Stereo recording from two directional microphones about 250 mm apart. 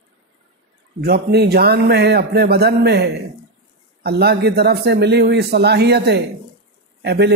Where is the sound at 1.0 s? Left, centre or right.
Right.